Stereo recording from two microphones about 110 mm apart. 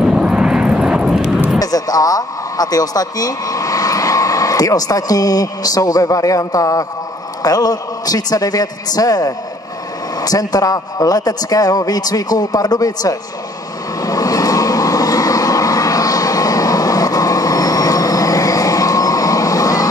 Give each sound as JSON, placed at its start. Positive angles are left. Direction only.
{"t": 0.0, "sound": "vehicle", "side_deg": -10}
{"t": 1.6, "sound": "a man's voice", "side_deg": 35}
{"t": 14.0, "sound": "vehicle", "side_deg": 35}